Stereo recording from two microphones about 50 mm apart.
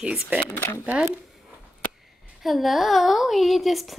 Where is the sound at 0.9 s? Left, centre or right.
Right.